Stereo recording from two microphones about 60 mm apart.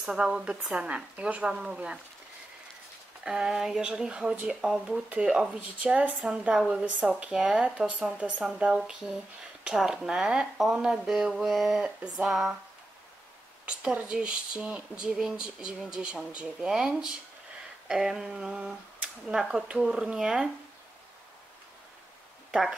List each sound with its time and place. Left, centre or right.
0.0 s speech: centre
3.3 s speech: centre
7.6 s speech: right; by 11.8 s centre
11.8 s speech: centre
12.3 s speech: centre
13.8 s speech: centre
22.5 s speech: centre